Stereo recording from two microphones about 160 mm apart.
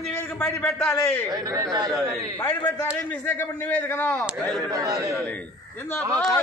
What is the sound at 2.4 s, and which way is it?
A man's voice, 10° left (ahead or behind).